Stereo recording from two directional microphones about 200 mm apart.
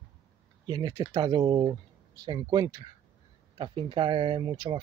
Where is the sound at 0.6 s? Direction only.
20° right (ahead or behind).